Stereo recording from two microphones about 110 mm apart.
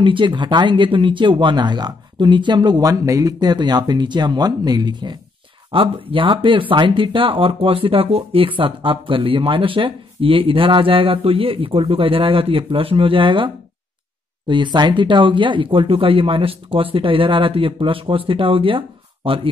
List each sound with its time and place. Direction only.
0.0 s speech: 50° right (ahead or behind)
5.7 s speech: 50° right (ahead or behind)
14.5 s speech: 45° right (ahead or behind)